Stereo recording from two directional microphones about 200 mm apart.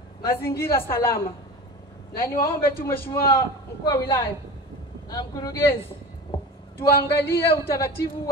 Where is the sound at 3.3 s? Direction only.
15° left (ahead or behind).